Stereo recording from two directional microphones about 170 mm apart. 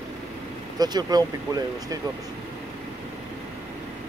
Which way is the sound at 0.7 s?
25° right (ahead or behind).